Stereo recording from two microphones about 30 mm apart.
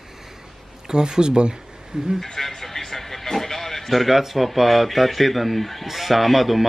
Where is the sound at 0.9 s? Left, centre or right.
Right.